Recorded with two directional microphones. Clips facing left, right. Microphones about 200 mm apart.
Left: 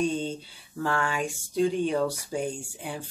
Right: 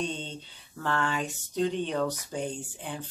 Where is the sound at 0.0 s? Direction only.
10° left (ahead or behind).